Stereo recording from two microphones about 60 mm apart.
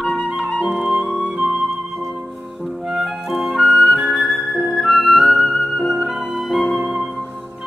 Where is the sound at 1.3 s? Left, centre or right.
Centre.